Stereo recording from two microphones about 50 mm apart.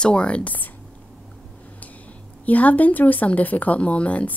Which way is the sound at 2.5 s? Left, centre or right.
Left.